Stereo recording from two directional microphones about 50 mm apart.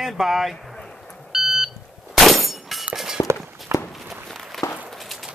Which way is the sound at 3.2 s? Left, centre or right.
Left.